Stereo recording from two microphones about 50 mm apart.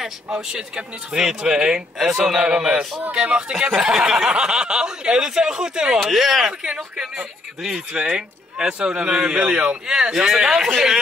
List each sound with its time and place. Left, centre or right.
0.0 s speech: centre
6.6 s speech: centre
9.4 s speech: right; by 11.0 s centre